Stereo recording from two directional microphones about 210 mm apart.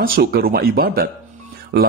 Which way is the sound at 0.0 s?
45° right (ahead or behind).